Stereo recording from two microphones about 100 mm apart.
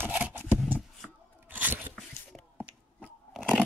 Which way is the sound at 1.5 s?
20° right (ahead or behind).